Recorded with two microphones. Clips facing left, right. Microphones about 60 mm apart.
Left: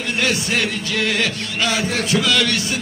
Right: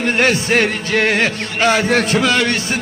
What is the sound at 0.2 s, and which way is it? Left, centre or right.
Music, right.